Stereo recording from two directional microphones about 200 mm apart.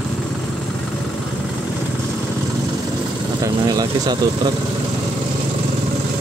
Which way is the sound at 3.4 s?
20° right (ahead or behind).